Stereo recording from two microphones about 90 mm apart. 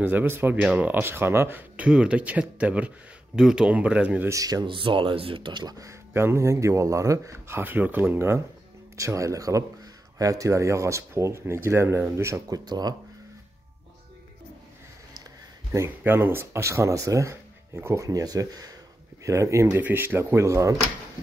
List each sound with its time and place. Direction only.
0.0 s speech: 20° right (ahead or behind)
4.3 s speech: 40° right (ahead or behind)
4.6 s speech: 70° right (ahead or behind); by 5.9 s 50° right (ahead or behind)
5.9 s speech: 30° right (ahead or behind)
8.9 s speech: 35° right (ahead or behind)
12.5 s speech: 50° right (ahead or behind)
16.0 s speech: 25° right (ahead or behind)
19.8 s speech: 20° right (ahead or behind)